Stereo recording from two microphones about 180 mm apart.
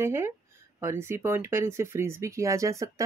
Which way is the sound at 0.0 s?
15° right (ahead or behind).